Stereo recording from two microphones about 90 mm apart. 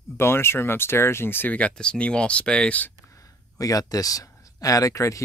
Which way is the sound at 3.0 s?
40° left (ahead or behind).